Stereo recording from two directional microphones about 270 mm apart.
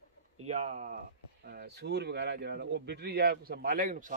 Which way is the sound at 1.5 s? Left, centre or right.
Right.